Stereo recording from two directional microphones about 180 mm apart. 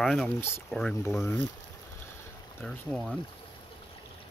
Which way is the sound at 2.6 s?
Centre (ahead or behind).